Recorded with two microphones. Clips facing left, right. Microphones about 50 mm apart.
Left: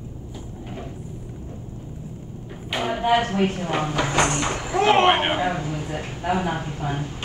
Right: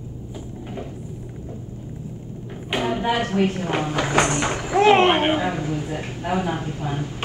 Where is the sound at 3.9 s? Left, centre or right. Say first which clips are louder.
Right 2 dB; centre.